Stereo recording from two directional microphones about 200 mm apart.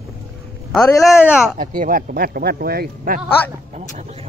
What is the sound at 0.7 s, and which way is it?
Speech, 15° left (ahead or behind).